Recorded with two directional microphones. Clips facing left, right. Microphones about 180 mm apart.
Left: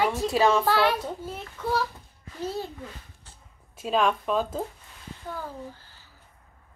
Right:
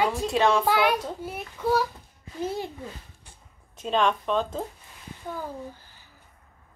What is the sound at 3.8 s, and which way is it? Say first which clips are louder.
Speech: even; 5° left (ahead or behind).